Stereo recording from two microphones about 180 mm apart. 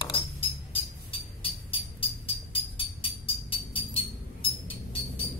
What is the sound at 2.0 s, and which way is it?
Music, 30° left (ahead or behind).